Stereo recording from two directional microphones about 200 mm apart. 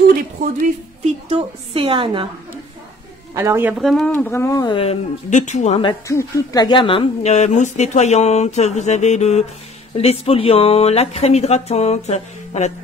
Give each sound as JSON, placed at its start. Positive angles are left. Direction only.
{"t": 1.0, "sound": "a woman's voice", "side_deg": -30}
{"t": 3.3, "sound": "speech", "side_deg": -15}